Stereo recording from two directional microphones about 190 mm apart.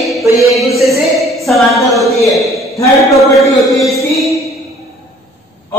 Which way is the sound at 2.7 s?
15° left (ahead or behind).